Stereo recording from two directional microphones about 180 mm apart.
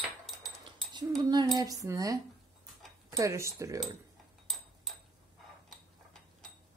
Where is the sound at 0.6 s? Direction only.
25° right (ahead or behind).